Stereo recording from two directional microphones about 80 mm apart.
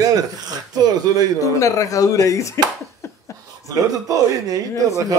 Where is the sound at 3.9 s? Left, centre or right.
Right.